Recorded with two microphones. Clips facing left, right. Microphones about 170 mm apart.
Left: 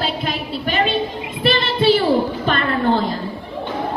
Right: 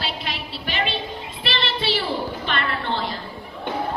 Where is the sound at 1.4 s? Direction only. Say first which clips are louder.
Left 10 dB; 45° left (ahead or behind).